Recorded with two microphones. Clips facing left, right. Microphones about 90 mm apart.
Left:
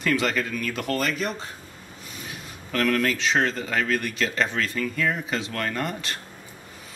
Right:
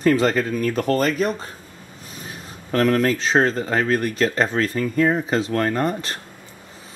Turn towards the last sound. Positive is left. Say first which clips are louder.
# right 7 dB
turn(degrees=-35)  # may be behind; listen again after turning